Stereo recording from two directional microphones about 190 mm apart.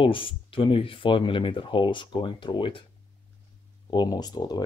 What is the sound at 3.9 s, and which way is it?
Speech, 20° left (ahead or behind).